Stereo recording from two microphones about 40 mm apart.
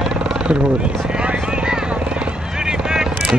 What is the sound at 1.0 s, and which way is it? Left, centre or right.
Vehicle, right.